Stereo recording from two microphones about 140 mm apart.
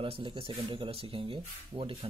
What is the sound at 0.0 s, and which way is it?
Speech, 40° right (ahead or behind).